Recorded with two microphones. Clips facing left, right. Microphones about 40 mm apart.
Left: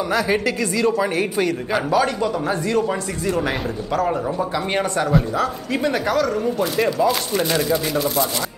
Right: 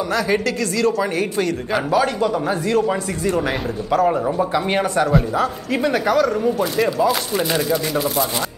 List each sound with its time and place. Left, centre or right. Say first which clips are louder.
0.1 s speech: even; centre